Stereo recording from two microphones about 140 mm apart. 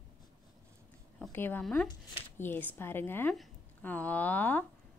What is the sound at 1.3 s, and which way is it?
A woman's voice, 15° left (ahead or behind).